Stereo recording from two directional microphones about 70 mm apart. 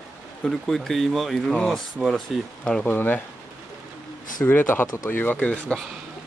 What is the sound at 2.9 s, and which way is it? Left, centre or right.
Speech, left.